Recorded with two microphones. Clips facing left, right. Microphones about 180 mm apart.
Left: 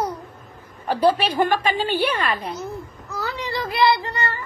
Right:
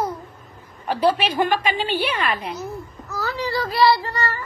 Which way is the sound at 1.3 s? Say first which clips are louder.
Left 1 dB; 50° left (ahead or behind).